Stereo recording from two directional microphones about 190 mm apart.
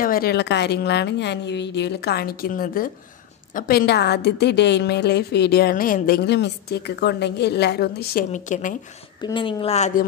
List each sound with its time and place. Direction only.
0.0 s a woman's voice: 50° left (ahead or behind)
9.2 s speech: 25° left (ahead or behind)